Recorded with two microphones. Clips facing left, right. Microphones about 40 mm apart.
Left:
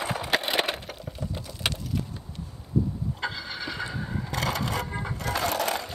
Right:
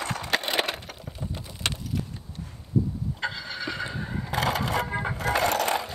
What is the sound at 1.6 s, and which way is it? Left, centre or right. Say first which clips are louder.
Keys jangling: even; centre.